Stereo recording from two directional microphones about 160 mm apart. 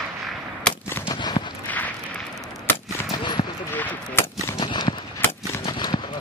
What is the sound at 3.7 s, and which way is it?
Gunshot, 10° left (ahead or behind).